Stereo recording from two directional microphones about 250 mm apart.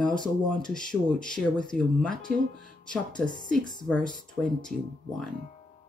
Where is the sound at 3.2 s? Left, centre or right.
Centre.